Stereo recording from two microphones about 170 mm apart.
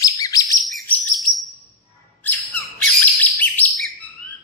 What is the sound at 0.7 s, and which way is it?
Chirp, centre (ahead or behind).